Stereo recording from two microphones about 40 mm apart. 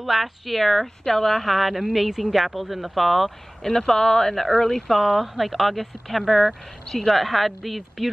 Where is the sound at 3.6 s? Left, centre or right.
Centre.